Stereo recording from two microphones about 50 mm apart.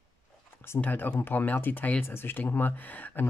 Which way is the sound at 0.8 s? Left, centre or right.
Left.